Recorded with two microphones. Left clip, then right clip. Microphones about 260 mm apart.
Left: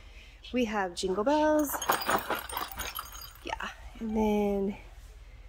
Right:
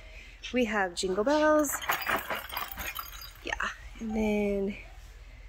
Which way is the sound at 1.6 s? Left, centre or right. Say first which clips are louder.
Even; centre.